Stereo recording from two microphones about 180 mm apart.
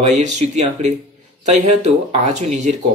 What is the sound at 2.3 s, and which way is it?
Speech, 40° right (ahead or behind).